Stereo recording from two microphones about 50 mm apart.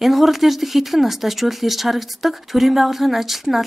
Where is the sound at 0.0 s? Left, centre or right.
Centre.